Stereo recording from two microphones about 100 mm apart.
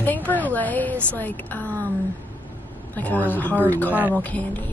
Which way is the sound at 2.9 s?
15° left (ahead or behind).